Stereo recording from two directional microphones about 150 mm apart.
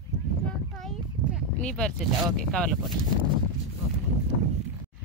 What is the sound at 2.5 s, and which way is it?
Speech, 5° left (ahead or behind).